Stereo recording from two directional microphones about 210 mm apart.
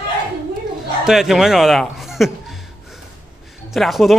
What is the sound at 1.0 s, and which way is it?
A man's voice, centre (ahead or behind).